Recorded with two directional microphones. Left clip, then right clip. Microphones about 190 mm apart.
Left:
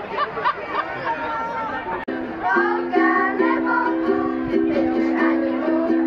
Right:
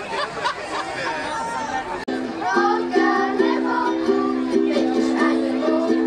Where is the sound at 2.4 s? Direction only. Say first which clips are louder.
Even; 20° left (ahead or behind).